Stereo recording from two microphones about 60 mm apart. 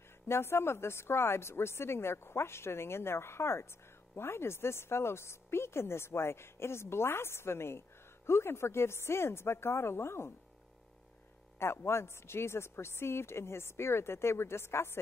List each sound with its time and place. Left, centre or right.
0.3 s a woman's voice: left
11.6 s a woman's voice: left